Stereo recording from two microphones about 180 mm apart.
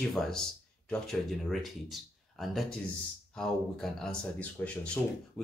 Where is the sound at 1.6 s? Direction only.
Centre (ahead or behind).